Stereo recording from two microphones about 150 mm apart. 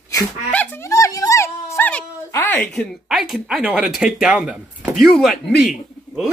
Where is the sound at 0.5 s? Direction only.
10° left (ahead or behind).